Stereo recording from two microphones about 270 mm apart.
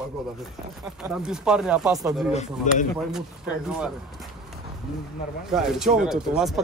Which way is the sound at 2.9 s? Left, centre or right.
Centre.